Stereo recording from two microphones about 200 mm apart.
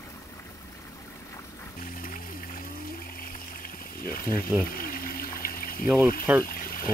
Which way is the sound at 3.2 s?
45° left (ahead or behind).